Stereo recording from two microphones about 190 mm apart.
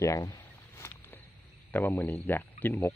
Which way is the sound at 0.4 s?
10° left (ahead or behind).